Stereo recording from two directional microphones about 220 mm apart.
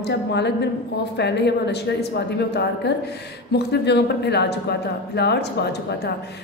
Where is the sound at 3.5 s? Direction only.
50° left (ahead or behind).